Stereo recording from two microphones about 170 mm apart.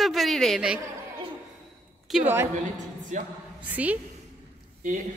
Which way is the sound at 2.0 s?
5° right (ahead or behind).